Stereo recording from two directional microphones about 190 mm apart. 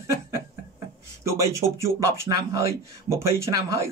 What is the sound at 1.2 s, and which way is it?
Speech, 15° right (ahead or behind).